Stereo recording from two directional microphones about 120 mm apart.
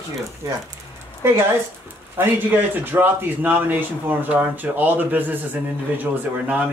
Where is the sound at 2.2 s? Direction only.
15° right (ahead or behind).